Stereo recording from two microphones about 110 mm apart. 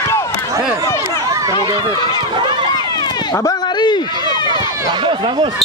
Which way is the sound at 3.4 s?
35° left (ahead or behind).